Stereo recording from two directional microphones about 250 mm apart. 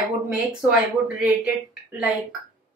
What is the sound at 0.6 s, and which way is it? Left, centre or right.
Speech, centre.